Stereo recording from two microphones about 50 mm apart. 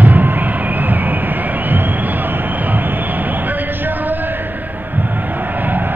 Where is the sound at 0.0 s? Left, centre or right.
Right.